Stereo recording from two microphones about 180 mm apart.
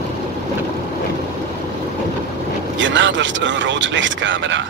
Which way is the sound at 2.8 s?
90° right.